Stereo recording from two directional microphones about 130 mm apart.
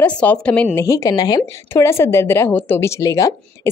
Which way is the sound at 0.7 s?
25° left (ahead or behind).